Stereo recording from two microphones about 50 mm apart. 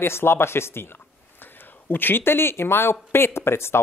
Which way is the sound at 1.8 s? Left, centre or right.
Left.